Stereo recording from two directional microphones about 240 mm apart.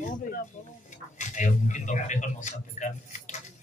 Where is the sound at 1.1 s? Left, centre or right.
Left.